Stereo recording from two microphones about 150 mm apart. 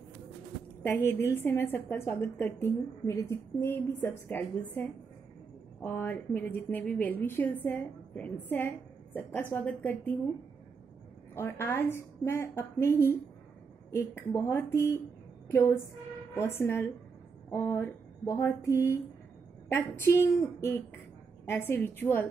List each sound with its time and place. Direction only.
0.8 s a woman's voice: 15° left (ahead or behind)
11.3 s a woman's voice: 15° left (ahead or behind)
17.5 s a sound: 20° left (ahead or behind)
19.7 s a woman's voice: 15° left (ahead or behind)
21.5 s a woman's voice: 15° left (ahead or behind)